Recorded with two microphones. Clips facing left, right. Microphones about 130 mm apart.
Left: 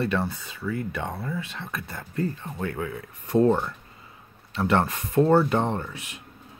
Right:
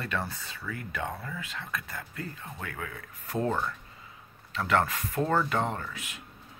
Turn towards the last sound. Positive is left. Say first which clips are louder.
# left 5 dB
turn(degrees=25)  # may be behind; listen again after turning